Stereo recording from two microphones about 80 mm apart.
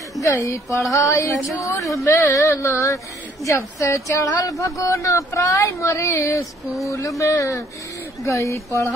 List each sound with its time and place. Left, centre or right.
0.2 s speech: left
6.6 s speech: centre
7.2 s speech: left